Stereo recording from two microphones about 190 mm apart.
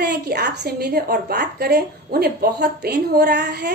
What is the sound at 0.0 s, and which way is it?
A woman's voice, 55° right (ahead or behind).